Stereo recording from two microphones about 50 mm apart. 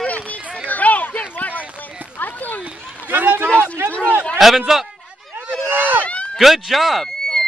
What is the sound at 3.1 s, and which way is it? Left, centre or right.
Run, right.